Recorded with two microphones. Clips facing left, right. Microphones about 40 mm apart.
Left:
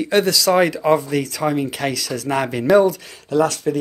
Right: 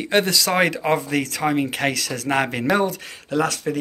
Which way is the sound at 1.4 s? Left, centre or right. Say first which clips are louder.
Left 1 dB; right.